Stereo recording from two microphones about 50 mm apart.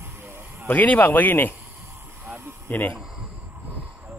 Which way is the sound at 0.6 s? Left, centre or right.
Left.